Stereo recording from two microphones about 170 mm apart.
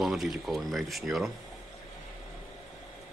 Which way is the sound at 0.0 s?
Centre (ahead or behind).